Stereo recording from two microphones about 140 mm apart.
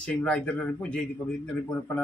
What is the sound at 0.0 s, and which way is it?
Speech, 10° left (ahead or behind).